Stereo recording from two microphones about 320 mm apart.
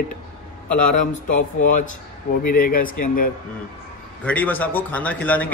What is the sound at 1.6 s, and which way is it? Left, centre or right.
A man's voice, left.